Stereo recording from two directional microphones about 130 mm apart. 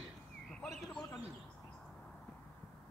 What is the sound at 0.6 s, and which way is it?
Speech, 5° left (ahead or behind).